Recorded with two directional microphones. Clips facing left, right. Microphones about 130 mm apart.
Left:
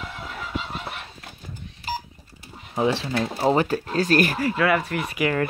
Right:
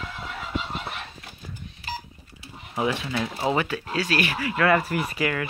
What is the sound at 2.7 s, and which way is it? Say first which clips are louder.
Speech: left 3 dB; 30° left (ahead or behind).